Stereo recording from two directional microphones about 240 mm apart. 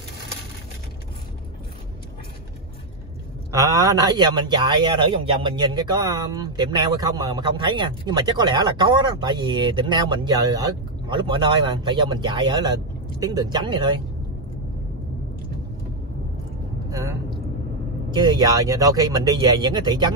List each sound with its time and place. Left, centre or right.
3.5 s speech: centre
16.9 s vehicle: centre
18.1 s speech: centre